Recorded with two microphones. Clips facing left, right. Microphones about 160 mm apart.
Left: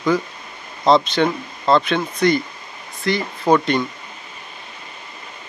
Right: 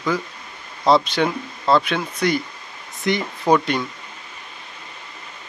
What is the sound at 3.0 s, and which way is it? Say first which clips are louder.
Speech: left 1 dB; 20° right (ahead or behind).